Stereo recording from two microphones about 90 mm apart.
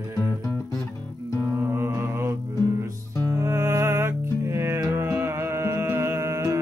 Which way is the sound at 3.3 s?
30° right (ahead or behind).